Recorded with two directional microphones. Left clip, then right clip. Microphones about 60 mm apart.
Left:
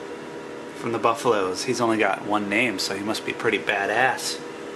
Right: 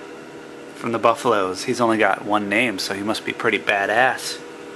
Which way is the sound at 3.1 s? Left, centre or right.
Right.